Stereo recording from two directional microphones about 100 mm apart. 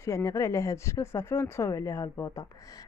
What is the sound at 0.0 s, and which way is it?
A woman's voice, 30° left (ahead or behind).